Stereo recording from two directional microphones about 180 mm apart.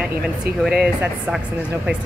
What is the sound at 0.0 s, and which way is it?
Speech, 5° right (ahead or behind).